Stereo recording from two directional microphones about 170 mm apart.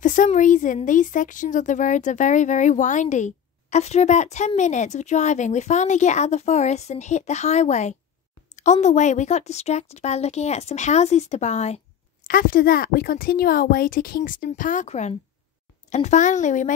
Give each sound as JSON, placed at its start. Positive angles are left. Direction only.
{"t": 0.0, "sound": "a woman's voice", "side_deg": 50}
{"t": 12.3, "sound": "speech", "side_deg": 55}